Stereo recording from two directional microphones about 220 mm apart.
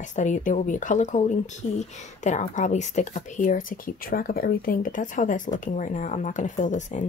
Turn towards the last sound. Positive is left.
turn(degrees=35)  # may be behind; listen again after turning